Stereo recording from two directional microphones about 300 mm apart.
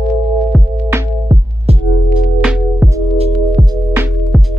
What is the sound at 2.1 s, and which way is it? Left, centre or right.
Music, centre.